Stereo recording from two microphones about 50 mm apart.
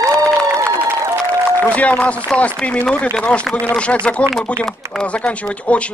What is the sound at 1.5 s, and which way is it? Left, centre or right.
A man's voice, left.